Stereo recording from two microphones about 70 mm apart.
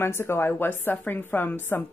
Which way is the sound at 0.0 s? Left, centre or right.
Left.